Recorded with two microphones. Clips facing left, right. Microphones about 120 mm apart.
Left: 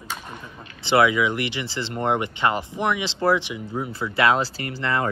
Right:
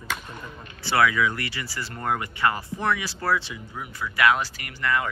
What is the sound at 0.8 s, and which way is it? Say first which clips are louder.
Speech: left 3 dB; 20° left (ahead or behind).